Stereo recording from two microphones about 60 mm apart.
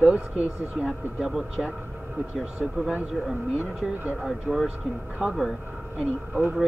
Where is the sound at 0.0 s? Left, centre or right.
Right.